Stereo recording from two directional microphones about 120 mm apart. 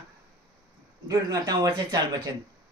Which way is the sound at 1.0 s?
35° right (ahead or behind).